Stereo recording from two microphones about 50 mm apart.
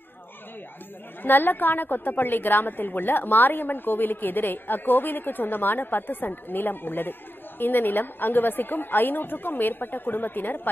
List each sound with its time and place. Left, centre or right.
1.2 s a woman's voice: left